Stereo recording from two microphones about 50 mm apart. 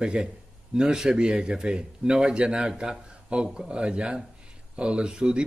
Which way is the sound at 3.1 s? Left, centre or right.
Centre.